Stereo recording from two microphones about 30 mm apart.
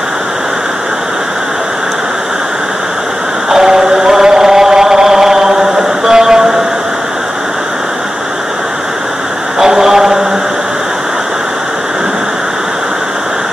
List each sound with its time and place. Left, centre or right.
3.4 s chant: centre
6.0 s vehicle: centre
9.6 s mantra: centre